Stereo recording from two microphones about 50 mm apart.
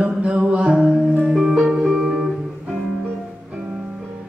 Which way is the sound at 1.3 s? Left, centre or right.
Centre.